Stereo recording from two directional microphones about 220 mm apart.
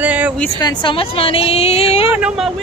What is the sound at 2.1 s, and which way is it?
Speech, 5° right (ahead or behind).